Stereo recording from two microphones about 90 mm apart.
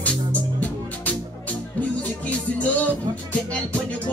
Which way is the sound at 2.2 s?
15° left (ahead or behind).